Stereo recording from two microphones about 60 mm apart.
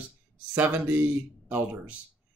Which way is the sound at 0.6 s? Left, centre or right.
Right.